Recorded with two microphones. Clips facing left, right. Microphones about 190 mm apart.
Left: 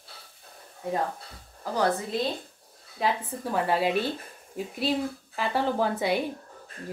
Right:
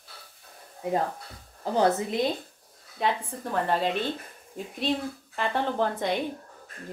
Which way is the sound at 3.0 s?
5° left (ahead or behind).